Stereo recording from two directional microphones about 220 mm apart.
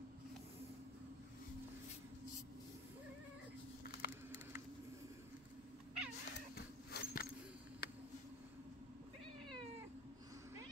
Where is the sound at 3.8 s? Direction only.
45° left (ahead or behind).